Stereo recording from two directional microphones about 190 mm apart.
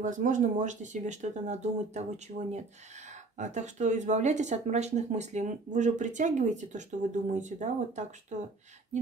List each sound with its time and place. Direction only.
0.0 s speech: 40° right (ahead or behind)